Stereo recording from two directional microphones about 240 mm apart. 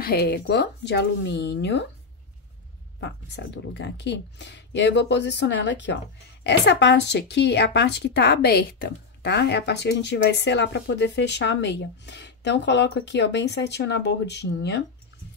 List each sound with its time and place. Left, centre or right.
0.0 s speech: left
3.0 s speech: left